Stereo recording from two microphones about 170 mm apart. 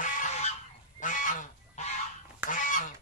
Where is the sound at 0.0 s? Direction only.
50° left (ahead or behind).